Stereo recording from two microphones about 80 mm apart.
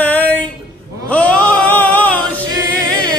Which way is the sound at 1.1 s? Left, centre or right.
Centre.